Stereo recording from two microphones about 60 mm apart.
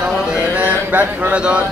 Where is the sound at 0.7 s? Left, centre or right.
Right.